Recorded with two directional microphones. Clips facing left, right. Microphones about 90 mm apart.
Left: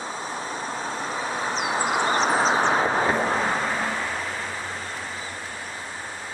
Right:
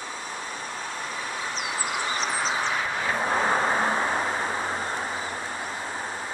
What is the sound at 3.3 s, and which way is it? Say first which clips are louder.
Vehicle: right 1 dB; 25° right (ahead or behind).